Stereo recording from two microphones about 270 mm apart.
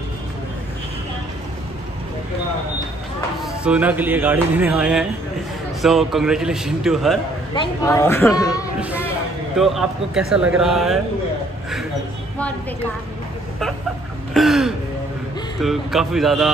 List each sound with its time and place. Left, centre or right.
3.6 s a man's voice: centre
7.5 s speech: centre
9.6 s a man's voice: centre
14.3 s throat clearing: centre
15.6 s a man's voice: centre